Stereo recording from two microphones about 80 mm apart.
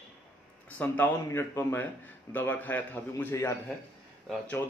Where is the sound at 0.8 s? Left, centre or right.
Left.